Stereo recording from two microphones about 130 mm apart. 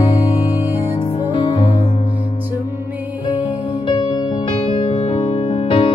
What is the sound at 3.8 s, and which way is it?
Music, 40° left (ahead or behind).